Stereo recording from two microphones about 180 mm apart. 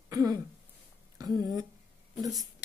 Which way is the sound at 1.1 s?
20° right (ahead or behind).